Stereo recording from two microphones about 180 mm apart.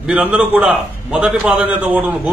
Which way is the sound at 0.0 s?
10° right (ahead or behind).